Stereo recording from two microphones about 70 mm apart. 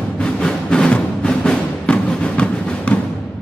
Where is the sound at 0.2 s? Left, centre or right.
Centre.